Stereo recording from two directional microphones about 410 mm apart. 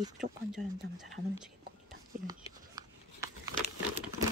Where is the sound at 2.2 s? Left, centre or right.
Centre.